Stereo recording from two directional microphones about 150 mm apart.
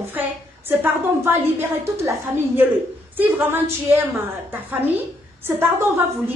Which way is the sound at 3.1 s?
15° right (ahead or behind).